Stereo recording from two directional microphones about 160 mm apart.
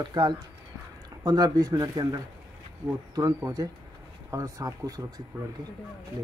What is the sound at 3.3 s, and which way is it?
Speech, 20° right (ahead or behind).